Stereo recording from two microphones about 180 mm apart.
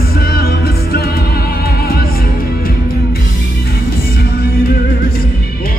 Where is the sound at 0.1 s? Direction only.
55° left (ahead or behind).